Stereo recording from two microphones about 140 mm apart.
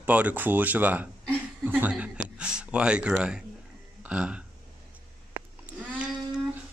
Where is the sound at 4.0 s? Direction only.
10° right (ahead or behind).